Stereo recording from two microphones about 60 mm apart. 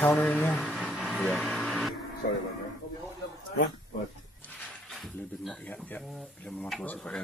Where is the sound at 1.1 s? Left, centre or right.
Left.